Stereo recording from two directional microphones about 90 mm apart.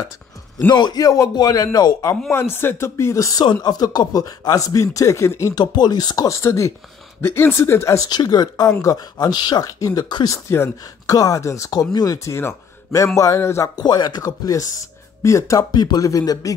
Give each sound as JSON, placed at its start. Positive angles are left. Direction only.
{"t": 0.7, "sound": "speech", "side_deg": 55}
{"t": 2.3, "sound": "speech", "side_deg": 25}
{"t": 5.5, "sound": "speech", "side_deg": 50}
{"t": 8.1, "sound": "speech", "side_deg": 50}
{"t": 11.1, "sound": "speech", "side_deg": 40}
{"t": 13.7, "sound": "speech", "side_deg": 50}
{"t": 15.7, "sound": "speech", "side_deg": 50}